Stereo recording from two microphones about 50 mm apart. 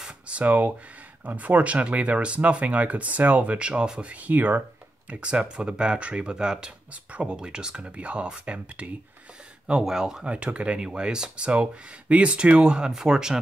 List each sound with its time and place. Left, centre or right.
0.3 s speech: right
4.1 s speech: right
5.1 s speech: centre
6.9 s speech: right
9.7 s speech: centre
10.3 s speech: right